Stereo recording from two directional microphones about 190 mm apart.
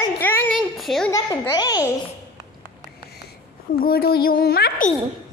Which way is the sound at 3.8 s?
50° left (ahead or behind).